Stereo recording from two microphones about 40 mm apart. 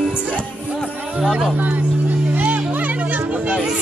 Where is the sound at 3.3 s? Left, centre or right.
Right.